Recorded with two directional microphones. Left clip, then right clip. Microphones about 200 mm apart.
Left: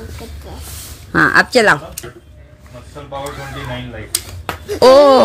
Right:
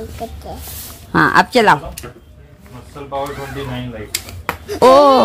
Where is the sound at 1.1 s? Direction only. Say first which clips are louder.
Left 1 dB; 5° right (ahead or behind).